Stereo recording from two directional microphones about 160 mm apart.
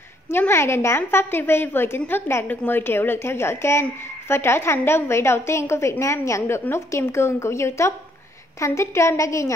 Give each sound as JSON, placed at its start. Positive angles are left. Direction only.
{"t": 0.3, "sound": "a woman's voice", "side_deg": 15}